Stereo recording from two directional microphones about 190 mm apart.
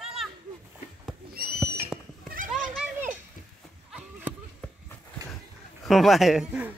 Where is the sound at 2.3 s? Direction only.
45° right (ahead or behind).